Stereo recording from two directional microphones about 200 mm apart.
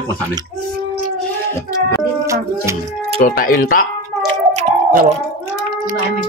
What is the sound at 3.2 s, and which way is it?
Speech, 45° left (ahead or behind).